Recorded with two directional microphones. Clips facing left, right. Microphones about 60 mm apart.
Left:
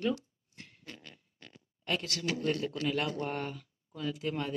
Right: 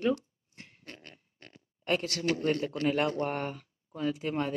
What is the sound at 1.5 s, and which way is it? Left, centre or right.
Speech, right.